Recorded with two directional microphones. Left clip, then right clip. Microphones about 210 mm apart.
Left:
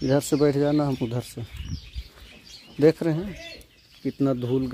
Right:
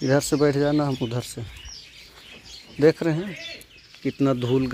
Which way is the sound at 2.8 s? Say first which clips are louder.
Right 1 dB; 15° left (ahead or behind).